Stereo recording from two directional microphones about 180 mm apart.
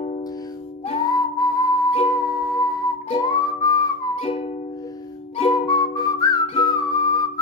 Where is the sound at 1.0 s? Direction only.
20° left (ahead or behind).